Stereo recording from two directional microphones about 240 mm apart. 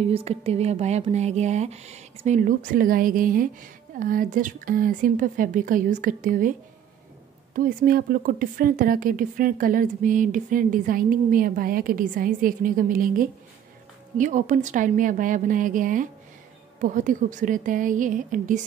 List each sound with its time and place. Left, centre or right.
0.0 s speech: right
7.5 s speech: right